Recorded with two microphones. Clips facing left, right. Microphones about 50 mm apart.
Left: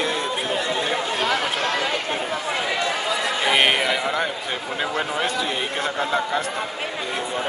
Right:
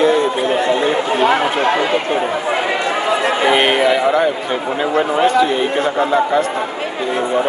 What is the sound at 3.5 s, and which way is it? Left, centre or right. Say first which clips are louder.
Speech: right 4 dB; centre.